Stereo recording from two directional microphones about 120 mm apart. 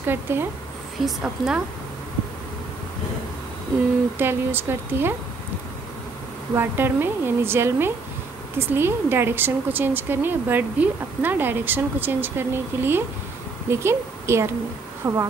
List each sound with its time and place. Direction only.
0.0 s speech: 20° right (ahead or behind)
1.0 s a woman's voice: 5° right (ahead or behind)
4.2 s speech: 20° right (ahead or behind)
6.5 s a woman's voice: 20° right (ahead or behind)